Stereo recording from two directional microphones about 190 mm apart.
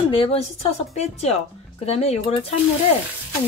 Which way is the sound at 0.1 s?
30° left (ahead or behind).